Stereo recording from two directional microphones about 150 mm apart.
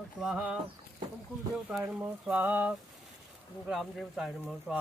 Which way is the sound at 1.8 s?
10° right (ahead or behind).